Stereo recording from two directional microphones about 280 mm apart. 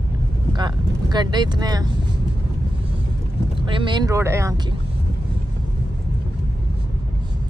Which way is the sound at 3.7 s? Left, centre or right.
Centre.